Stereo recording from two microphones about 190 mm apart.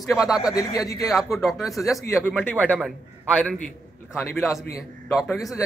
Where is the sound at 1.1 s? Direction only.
Centre (ahead or behind).